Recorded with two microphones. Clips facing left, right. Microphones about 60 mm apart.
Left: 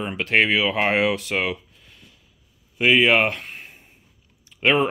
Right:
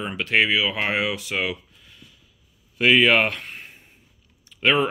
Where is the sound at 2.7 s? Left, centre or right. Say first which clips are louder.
Even; centre.